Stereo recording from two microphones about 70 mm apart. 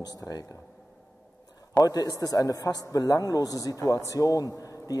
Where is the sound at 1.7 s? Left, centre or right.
Left.